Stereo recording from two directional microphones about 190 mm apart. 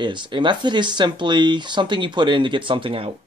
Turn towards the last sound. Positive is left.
turn(degrees=-30)  # may be behind; listen again after turning